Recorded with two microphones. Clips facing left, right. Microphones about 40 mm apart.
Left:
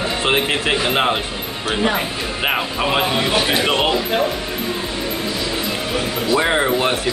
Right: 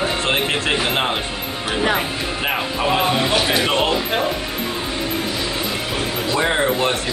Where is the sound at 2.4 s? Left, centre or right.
Centre.